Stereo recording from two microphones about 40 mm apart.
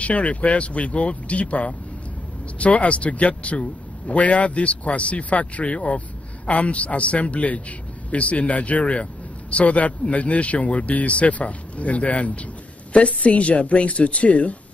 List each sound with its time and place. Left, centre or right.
0.0 s speech: left